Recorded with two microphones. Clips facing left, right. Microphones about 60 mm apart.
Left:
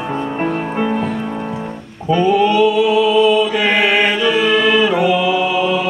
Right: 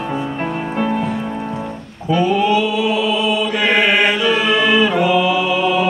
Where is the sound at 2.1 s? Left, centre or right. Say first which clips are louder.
Left 2 dB; centre.